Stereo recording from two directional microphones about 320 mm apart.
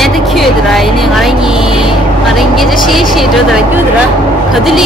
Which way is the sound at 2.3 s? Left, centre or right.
Centre.